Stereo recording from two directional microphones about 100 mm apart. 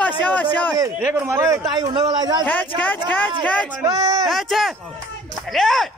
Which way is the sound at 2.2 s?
40° right (ahead or behind).